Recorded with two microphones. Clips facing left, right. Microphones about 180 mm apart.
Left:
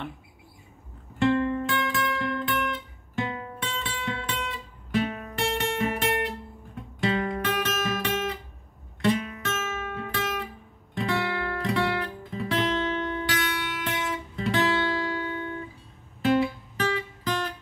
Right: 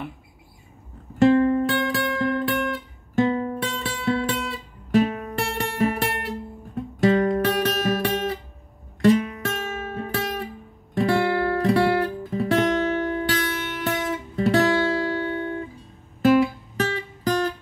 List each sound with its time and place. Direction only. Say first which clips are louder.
1.2 s guitar: right 7 dB; 40° right (ahead or behind)
4.9 s music: right 7 dB; 40° right (ahead or behind)
6.7 s music: right 8 dB; 45° right (ahead or behind)